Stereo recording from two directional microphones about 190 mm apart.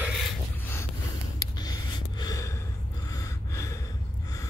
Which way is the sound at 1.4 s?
20° left (ahead or behind).